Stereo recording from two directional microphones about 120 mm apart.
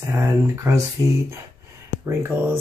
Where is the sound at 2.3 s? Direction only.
15° right (ahead or behind).